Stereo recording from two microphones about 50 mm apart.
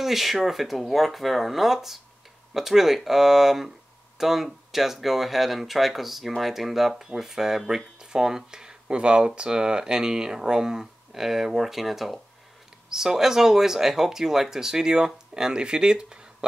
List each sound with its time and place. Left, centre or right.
0.0 s speech: centre